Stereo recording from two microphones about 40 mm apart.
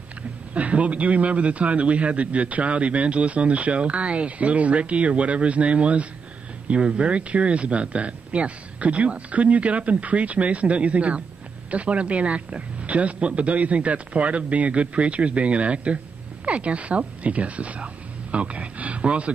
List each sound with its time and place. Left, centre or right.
0.6 s a man's voice: right